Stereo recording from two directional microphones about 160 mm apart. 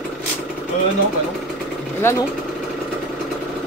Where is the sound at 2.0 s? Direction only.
15° left (ahead or behind).